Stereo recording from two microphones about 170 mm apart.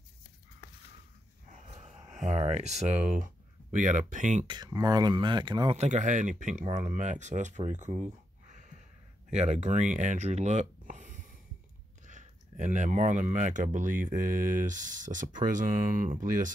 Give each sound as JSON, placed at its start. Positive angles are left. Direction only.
{"t": 1.5, "sound": "dog", "side_deg": -40}
{"t": 2.1, "sound": "speech", "side_deg": -40}
{"t": 4.5, "sound": "speech", "side_deg": -25}
{"t": 5.8, "sound": "speech", "side_deg": -45}